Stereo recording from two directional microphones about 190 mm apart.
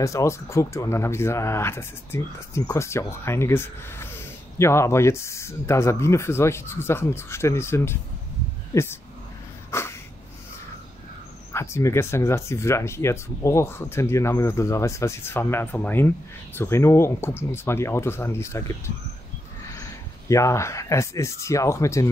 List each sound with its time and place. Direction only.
0.0 s speech: 15° left (ahead or behind)
9.7 s a sound: 15° left (ahead or behind)
11.5 s speech: 15° left (ahead or behind)
20.2 s speech: 15° left (ahead or behind)